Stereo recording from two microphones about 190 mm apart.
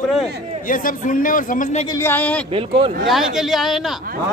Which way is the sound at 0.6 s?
45° left (ahead or behind).